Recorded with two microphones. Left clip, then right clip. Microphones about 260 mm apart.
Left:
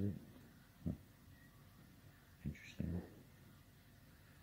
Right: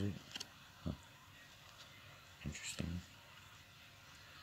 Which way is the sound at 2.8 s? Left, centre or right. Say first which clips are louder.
Right 1 dB; right.